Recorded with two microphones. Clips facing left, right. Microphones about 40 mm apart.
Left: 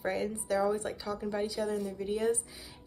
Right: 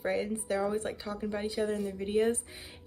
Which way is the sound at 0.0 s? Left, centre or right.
Centre.